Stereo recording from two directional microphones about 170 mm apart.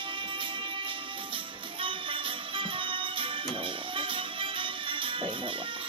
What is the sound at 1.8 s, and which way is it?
Music, 30° right (ahead or behind).